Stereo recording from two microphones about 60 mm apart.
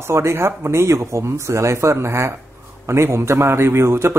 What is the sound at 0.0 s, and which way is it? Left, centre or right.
Speech, right.